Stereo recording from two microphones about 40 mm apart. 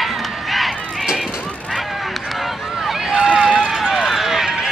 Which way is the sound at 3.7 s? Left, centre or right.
Centre.